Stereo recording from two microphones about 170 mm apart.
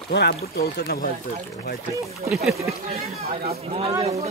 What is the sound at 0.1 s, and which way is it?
Speech, 75° left (ahead or behind).